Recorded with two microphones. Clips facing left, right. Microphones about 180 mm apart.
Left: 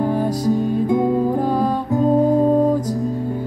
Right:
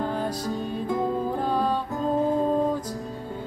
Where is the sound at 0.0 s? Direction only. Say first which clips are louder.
Left 9 dB; 15° left (ahead or behind).